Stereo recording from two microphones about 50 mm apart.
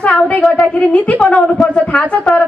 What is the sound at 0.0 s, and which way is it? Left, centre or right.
A woman's voice, left.